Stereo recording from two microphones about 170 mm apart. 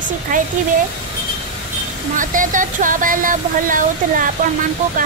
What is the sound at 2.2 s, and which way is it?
Speech, 50° right (ahead or behind).